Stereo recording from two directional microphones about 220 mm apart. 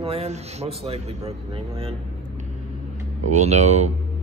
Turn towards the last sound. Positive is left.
turn(degrees=-30)  # may be behind; listen again after turning